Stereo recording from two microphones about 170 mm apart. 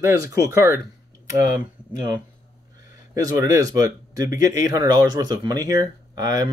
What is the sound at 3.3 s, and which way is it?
Speech, 20° right (ahead or behind).